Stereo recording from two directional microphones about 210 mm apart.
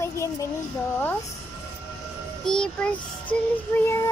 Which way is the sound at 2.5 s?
5° left (ahead or behind).